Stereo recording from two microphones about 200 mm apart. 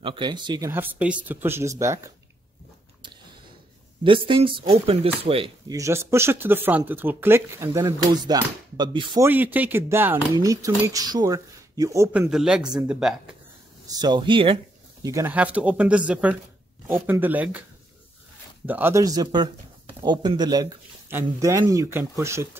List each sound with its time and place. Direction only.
0.0 s chopping: 25° right (ahead or behind)
0.7 s speech: 10° right (ahead or behind)
4.0 s chopping: 25° right (ahead or behind)
5.8 s speech: 15° right (ahead or behind)
8.1 s chopping: 20° right (ahead or behind)
9.2 s speech: 10° right (ahead or behind)
13.8 s chopping: 20° right (ahead or behind)
15.0 s speech: 10° right (ahead or behind)
18.7 s speech: 10° right (ahead or behind)
20.0 s chopping: 20° right (ahead or behind)
21.1 s speech: 15° right (ahead or behind)